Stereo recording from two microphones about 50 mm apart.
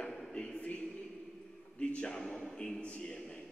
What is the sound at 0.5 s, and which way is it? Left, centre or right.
A man's voice, left.